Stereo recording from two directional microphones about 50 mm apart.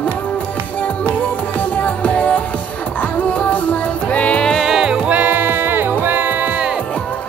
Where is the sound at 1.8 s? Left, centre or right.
Left.